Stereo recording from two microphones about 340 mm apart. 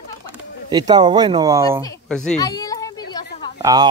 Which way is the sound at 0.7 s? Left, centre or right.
Centre.